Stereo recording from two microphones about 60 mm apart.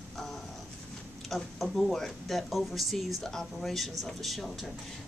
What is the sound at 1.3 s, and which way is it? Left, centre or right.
A woman's voice, centre.